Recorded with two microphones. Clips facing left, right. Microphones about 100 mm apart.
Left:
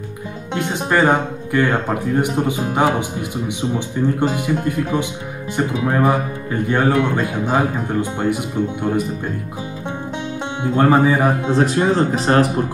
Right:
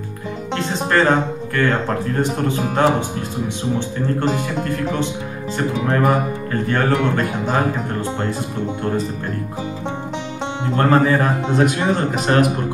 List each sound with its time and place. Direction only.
0.6 s speech: 15° left (ahead or behind)
10.6 s speech: 15° left (ahead or behind)
11.5 s speech: 35° left (ahead or behind)